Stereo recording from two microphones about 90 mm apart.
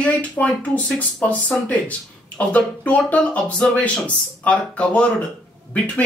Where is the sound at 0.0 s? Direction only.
15° left (ahead or behind).